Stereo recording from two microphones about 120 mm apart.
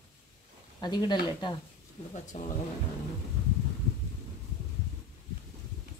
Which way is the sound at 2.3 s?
90° left.